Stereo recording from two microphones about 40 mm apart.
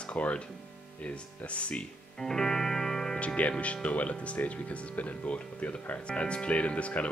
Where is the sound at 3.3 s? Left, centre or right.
Left.